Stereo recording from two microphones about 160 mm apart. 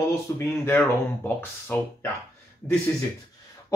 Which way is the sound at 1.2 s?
15° left (ahead or behind).